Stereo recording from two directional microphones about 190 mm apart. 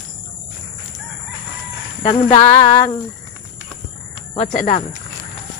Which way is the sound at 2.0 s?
30° left (ahead or behind).